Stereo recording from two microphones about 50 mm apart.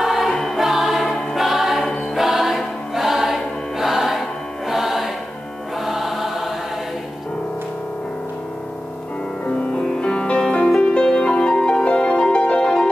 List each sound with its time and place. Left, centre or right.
0.0 s choir: centre
0.3 s choir: centre
0.6 s music: centre
2.1 s choir: centre
5.8 s music: centre
9.5 s music: left